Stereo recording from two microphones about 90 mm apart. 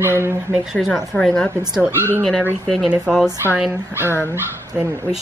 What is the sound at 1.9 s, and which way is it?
Speech, 25° right (ahead or behind).